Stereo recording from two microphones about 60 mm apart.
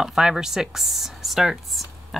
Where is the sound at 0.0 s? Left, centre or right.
Centre.